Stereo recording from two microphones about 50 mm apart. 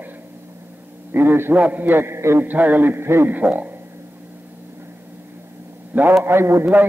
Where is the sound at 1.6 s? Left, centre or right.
Right.